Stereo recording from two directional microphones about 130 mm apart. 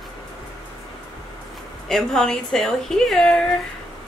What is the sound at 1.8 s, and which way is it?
A woman's voice, 5° left (ahead or behind).